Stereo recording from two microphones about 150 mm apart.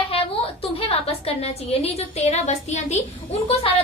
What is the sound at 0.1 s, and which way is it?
A woman's voice, 40° left (ahead or behind).